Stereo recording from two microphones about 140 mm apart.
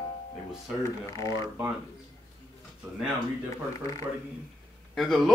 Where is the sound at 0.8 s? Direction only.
25° left (ahead or behind).